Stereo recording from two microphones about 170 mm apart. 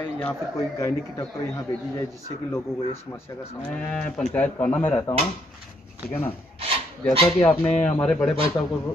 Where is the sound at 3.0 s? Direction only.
15° left (ahead or behind).